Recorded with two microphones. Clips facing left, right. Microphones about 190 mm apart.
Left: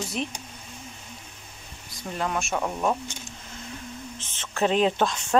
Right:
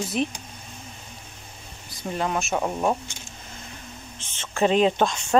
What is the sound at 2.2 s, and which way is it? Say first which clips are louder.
Speech: right 2 dB; 5° right (ahead or behind).